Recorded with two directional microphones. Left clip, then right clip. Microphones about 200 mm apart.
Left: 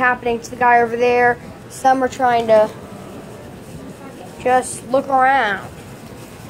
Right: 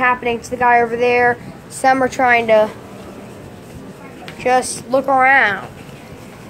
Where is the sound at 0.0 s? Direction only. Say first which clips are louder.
Right 1 dB; 5° right (ahead or behind).